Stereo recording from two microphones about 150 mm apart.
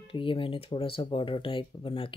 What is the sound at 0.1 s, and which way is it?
Speech, 35° left (ahead or behind).